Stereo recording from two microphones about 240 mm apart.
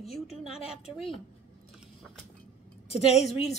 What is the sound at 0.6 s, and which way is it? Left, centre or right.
Speech, left.